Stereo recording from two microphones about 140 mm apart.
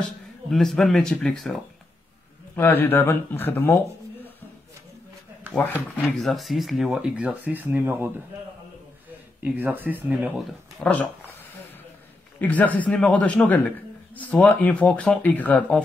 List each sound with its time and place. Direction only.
0.5 s speech: centre (ahead or behind)
2.5 s a man's voice: 15° left (ahead or behind)
5.6 s a man's voice: 10° left (ahead or behind)
6.0 s speech: centre (ahead or behind); by 8.1 s 15° right (ahead or behind)
9.4 s speech: 10° right (ahead or behind)
10.8 s a man's voice: 10° left (ahead or behind)
12.4 s a man's voice: 10° left (ahead or behind)